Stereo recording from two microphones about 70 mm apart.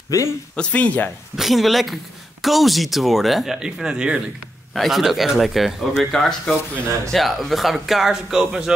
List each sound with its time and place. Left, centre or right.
0.1 s speech: left
0.6 s speech: centre
1.3 s speech: centre
4.7 s speech: centre